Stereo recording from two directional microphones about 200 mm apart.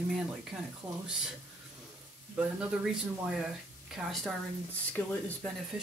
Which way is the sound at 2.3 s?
5° right (ahead or behind).